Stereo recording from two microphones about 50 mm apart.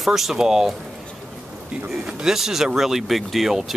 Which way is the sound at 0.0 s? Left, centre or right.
Centre.